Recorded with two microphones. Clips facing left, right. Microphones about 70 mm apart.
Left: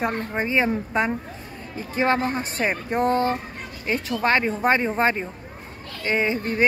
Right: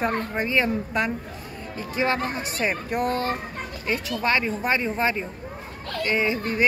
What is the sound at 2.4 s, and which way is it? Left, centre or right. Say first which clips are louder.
Speech: left 1 dB; left.